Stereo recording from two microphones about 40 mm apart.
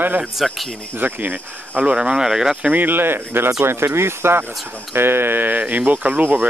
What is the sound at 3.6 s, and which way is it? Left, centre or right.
Speech, right.